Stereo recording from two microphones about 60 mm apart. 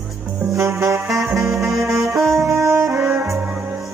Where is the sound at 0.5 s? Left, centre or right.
Right.